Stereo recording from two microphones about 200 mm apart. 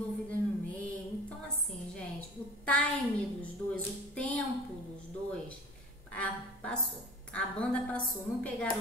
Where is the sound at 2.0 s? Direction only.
5° left (ahead or behind).